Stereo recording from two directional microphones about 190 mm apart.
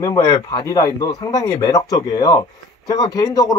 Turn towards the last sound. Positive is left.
turn(degrees=20)  # may be behind; listen again after turning